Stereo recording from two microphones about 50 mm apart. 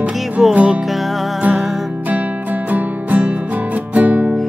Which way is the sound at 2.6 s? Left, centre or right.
Right.